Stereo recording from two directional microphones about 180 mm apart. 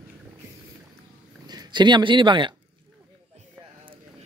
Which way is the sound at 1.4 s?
25° right (ahead or behind).